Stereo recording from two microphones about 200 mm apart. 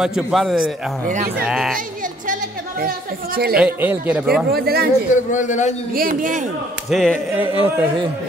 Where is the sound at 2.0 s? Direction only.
45° right (ahead or behind).